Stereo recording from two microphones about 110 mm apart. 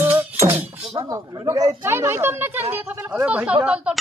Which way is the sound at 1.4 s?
35° right (ahead or behind).